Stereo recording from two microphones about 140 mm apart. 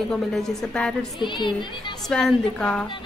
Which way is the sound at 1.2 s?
35° left (ahead or behind).